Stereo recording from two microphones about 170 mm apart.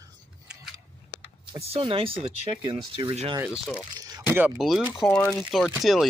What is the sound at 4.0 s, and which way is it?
Speech, 15° right (ahead or behind).